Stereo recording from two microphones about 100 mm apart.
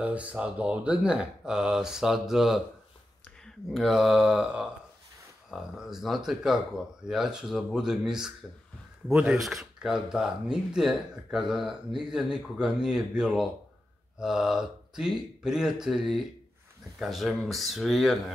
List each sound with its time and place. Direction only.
0.0 s speech: 15° right (ahead or behind)